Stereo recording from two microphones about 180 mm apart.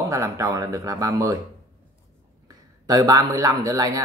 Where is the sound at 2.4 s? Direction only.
20° right (ahead or behind).